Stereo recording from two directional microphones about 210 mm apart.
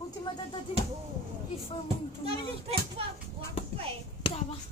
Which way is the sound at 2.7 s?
25° right (ahead or behind).